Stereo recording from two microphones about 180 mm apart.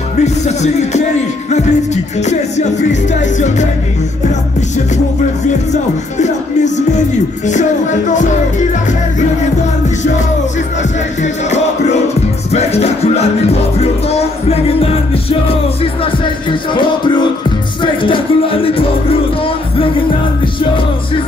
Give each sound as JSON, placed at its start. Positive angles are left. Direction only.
{"t": 0.2, "sound": "music", "side_deg": 40}
{"t": 2.2, "sound": "music", "side_deg": 40}
{"t": 5.7, "sound": "music", "side_deg": 40}
{"t": 12.5, "sound": "music", "side_deg": 35}